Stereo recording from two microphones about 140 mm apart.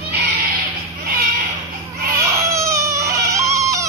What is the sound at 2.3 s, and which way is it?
Baby cry, 20° right (ahead or behind).